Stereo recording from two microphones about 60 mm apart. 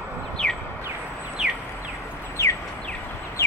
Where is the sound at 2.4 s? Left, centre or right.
Left.